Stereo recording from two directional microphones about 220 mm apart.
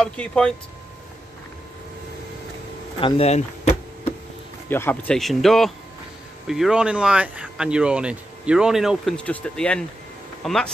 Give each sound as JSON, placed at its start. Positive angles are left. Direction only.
{"t": 0.0, "sound": "speech", "side_deg": 5}
{"t": 3.0, "sound": "a sound", "side_deg": 25}
{"t": 4.6, "sound": "speech", "side_deg": 10}